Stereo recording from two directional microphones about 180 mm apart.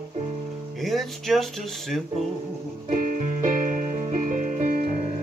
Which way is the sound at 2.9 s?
50° right (ahead or behind).